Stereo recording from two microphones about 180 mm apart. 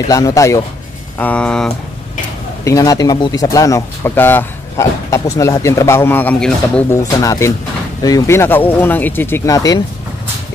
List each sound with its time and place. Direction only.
0.1 s speech: 20° left (ahead or behind)
2.6 s speech: 20° left (ahead or behind)
7.2 s speech: 15° left (ahead or behind)